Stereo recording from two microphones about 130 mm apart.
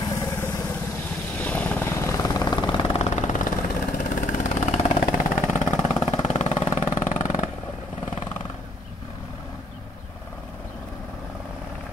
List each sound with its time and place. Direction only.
0.1 s vehicle: 25° left (ahead or behind)
1.4 s vehicle: 10° left (ahead or behind); by 5.1 s 50° left (ahead or behind)
5.1 s vehicle: 90° left
5.9 s vehicle: 60° left (ahead or behind); by 7.4 s 75° left (ahead or behind)